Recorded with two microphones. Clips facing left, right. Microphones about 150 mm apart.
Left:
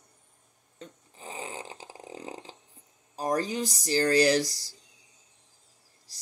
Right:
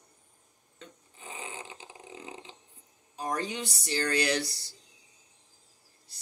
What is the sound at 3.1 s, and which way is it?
Speech, 35° left (ahead or behind).